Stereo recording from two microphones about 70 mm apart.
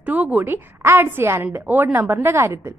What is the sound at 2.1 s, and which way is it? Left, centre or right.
Speech, right.